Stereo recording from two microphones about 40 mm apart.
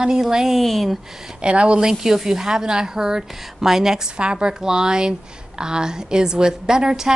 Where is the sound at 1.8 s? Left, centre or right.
Centre.